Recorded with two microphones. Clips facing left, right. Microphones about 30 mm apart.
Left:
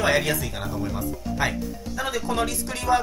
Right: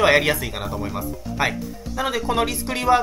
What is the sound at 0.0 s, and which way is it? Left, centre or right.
Speech, right.